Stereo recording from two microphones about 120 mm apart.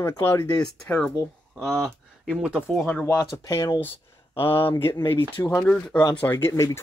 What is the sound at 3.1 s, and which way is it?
Speech, 30° left (ahead or behind).